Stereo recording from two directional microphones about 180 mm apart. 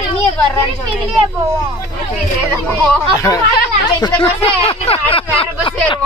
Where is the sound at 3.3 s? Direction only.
20° left (ahead or behind).